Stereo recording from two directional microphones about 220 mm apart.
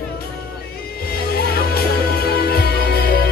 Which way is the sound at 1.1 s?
45° left (ahead or behind).